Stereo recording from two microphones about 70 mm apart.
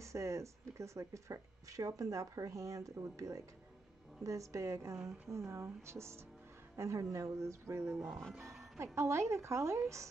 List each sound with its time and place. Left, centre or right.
0.0 s speech: right